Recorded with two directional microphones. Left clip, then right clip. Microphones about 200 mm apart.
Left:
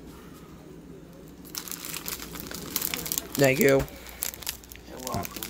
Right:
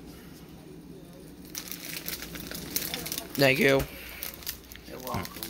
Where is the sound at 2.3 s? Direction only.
35° left (ahead or behind).